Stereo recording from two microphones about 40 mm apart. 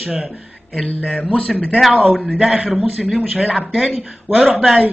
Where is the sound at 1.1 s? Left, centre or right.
Left.